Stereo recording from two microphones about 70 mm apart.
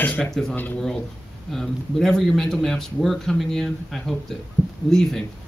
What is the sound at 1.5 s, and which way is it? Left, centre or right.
Speech, centre.